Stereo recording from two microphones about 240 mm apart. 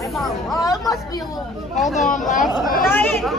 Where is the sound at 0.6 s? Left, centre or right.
Centre.